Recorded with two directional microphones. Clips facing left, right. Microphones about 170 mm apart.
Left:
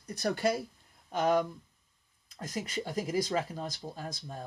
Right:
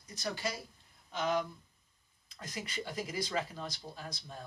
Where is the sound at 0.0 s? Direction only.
60° left (ahead or behind).